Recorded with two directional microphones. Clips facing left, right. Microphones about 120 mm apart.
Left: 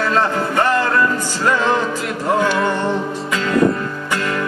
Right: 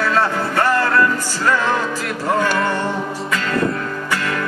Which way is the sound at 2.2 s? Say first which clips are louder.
Left 1 dB; centre (ahead or behind).